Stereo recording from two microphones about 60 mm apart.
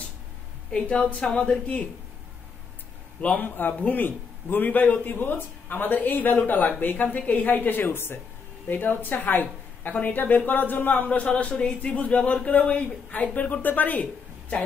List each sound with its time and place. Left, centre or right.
0.7 s a woman's voice: centre
3.2 s a man's voice: left